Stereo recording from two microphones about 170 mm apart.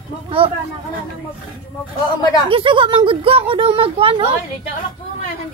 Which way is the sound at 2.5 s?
30° right (ahead or behind).